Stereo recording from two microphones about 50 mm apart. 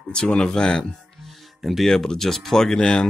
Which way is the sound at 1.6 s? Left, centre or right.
Centre.